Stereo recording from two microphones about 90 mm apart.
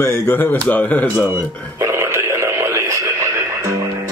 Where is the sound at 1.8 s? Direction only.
30° right (ahead or behind).